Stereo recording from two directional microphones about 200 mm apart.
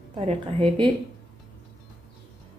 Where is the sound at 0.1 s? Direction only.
25° right (ahead or behind).